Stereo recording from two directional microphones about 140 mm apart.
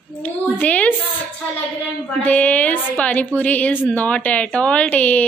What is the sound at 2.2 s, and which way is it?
A woman's voice, 10° left (ahead or behind).